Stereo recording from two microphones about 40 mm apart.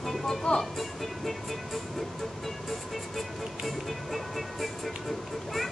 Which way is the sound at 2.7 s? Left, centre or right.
Centre.